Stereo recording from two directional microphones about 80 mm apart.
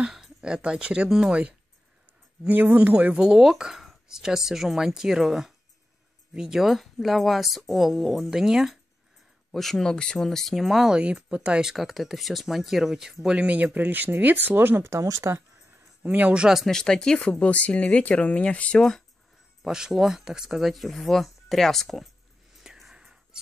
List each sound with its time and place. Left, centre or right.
0.0 s speech: centre; by 15.4 s right
16.0 s speech: centre
16.6 s speech: centre
19.6 s speech: centre
22.6 s whispering: centre